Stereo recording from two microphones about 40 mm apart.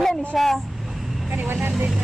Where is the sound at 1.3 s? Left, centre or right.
Right.